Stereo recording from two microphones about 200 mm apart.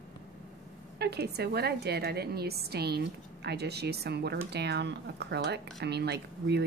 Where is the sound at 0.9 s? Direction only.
55° right (ahead or behind).